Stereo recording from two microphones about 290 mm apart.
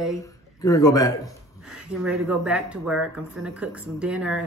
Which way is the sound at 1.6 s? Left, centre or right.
Centre.